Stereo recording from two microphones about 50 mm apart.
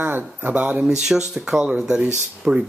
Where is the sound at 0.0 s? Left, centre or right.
Right.